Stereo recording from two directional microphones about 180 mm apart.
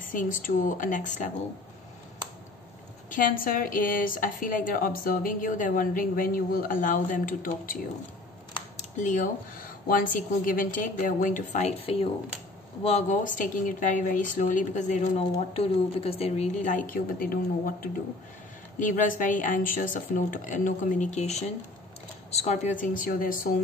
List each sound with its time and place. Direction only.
0.0 s speech: 50° left (ahead or behind)
3.1 s speech: 50° left (ahead or behind)
8.5 s a sound: 40° left (ahead or behind)
9.8 s speech: 50° left (ahead or behind)